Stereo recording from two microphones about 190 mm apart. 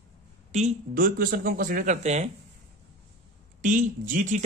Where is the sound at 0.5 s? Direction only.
35° right (ahead or behind).